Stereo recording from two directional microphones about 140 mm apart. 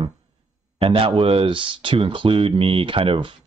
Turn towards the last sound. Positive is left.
turn(degrees=-35)  # may be behind; listen again after turning